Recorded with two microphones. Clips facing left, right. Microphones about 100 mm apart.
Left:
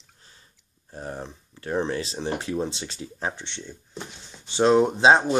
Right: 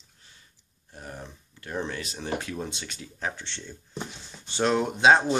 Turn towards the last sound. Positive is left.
turn(degrees=25)  # may be behind; listen again after turning